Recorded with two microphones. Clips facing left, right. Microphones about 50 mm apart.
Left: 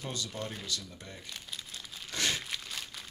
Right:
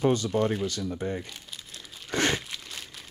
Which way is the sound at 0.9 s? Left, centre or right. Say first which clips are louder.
Right 16 dB; right.